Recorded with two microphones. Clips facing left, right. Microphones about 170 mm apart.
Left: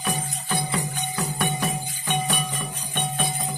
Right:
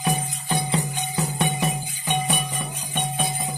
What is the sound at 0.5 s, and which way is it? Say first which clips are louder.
Music: right 3 dB; 25° right (ahead or behind).